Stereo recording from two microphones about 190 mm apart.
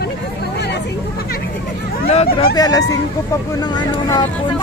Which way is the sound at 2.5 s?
20° left (ahead or behind).